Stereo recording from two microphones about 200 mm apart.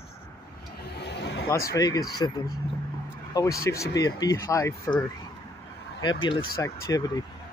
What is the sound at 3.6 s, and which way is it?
Speech, 15° left (ahead or behind).